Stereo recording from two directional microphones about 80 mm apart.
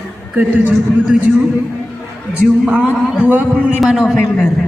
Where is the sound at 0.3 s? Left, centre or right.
Centre.